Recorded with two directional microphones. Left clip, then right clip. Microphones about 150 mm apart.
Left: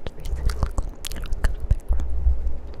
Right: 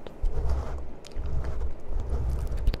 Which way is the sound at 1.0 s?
40° left (ahead or behind).